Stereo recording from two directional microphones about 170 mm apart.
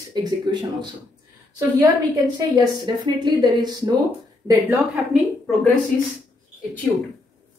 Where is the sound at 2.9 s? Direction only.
25° right (ahead or behind).